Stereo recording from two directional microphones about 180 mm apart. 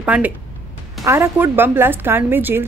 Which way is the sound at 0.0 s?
10° right (ahead or behind).